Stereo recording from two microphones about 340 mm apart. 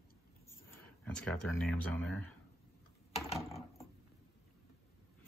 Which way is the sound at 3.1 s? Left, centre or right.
Centre.